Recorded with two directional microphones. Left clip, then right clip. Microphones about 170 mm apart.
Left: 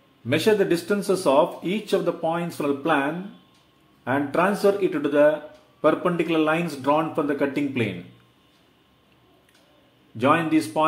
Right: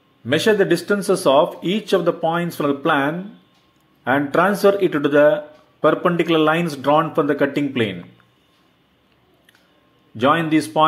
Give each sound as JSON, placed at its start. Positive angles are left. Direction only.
{"t": 0.3, "sound": "speech", "side_deg": -15}
{"t": 10.1, "sound": "speech", "side_deg": -20}